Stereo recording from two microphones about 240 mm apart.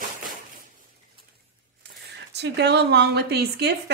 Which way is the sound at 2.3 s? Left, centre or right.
Right.